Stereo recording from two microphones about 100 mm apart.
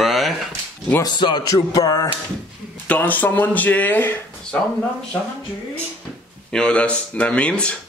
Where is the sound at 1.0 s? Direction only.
45° left (ahead or behind).